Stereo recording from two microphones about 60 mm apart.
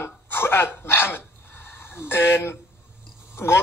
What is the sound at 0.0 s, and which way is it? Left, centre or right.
Hiccup, left.